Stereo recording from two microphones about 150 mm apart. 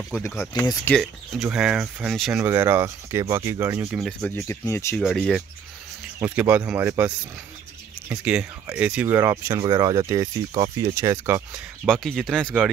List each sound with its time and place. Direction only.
0.8 s speech: centre (ahead or behind)
2.3 s speech: 15° right (ahead or behind)
4.4 s speech: 15° left (ahead or behind)
4.9 s speech: centre (ahead or behind)
8.1 s speech: 10° right (ahead or behind)
11.9 s speech: 5° left (ahead or behind)